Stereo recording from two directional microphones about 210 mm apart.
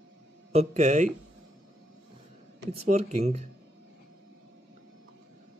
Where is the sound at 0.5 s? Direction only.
30° right (ahead or behind).